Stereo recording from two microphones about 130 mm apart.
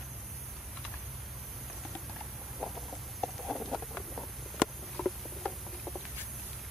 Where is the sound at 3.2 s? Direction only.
Centre (ahead or behind).